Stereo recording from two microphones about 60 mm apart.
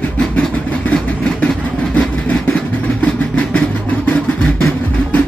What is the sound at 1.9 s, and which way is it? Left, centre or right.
Vehicle, centre.